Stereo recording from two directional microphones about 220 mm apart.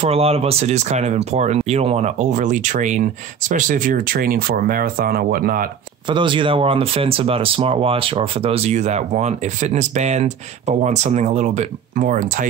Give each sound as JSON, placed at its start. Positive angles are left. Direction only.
{"t": 0.0, "sound": "speech", "side_deg": -25}
{"t": 6.0, "sound": "speech", "side_deg": -20}